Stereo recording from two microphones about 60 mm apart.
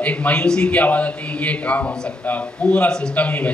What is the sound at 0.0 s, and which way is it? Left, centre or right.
A man's voice, left.